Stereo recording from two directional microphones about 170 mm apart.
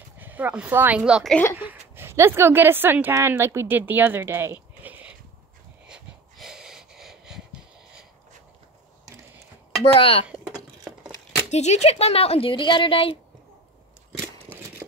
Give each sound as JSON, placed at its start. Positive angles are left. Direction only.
{"t": 0.2, "sound": "speech", "side_deg": -10}
{"t": 1.3, "sound": "speech", "side_deg": 15}
{"t": 1.6, "sound": "a woman's voice", "side_deg": -10}
{"t": 5.9, "sound": "a sound", "side_deg": -5}
{"t": 9.9, "sound": "a woman's voice", "side_deg": 30}
{"t": 10.2, "sound": "a sound", "side_deg": -5}
{"t": 11.5, "sound": "a woman's voice", "side_deg": 40}